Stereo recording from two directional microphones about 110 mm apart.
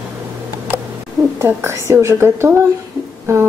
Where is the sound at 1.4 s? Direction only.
25° right (ahead or behind).